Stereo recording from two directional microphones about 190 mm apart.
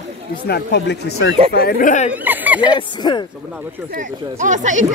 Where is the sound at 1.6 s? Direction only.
50° left (ahead or behind).